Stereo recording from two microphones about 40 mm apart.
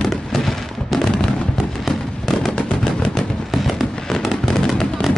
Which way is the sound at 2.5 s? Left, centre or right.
Centre.